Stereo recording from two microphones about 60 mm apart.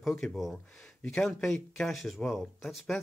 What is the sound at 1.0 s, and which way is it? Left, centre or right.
Speech, centre.